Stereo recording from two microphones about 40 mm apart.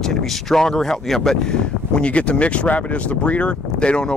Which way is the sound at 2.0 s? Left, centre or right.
Left.